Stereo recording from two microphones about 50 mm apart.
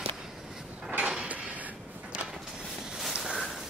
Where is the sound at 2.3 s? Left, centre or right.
Centre.